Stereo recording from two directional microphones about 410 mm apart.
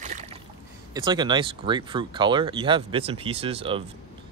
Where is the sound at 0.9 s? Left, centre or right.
Centre.